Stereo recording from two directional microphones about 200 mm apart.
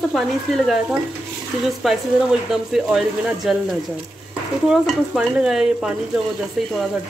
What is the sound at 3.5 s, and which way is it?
Speech, centre (ahead or behind).